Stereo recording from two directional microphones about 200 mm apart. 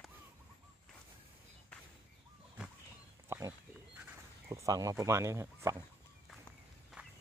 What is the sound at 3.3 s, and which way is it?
Pig, 15° right (ahead or behind).